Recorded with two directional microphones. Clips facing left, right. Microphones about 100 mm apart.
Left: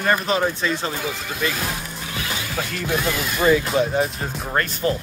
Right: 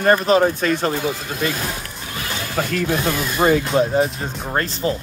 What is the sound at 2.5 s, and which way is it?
Speech, 50° right (ahead or behind).